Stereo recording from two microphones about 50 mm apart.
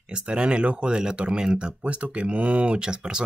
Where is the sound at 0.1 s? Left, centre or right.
Right.